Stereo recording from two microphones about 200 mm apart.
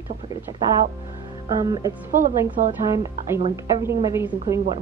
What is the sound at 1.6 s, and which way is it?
Speech, 20° right (ahead or behind).